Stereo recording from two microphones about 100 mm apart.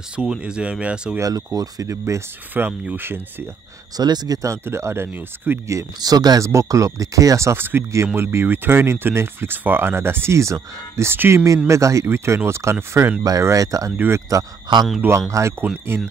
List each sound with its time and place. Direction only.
0.1 s speech: 10° right (ahead or behind)
1.2 s speech: 35° right (ahead or behind)
2.6 s speech: 15° right (ahead or behind)
3.9 s speech: 45° right (ahead or behind); by 5.6 s 20° right (ahead or behind)
5.7 s speech: 35° right (ahead or behind)
13.9 s speech: 20° right (ahead or behind)